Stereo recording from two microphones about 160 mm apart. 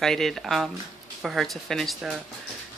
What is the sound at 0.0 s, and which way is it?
Speech, centre (ahead or behind).